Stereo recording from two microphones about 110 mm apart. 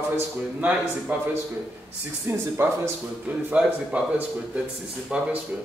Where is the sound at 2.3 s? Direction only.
20° right (ahead or behind).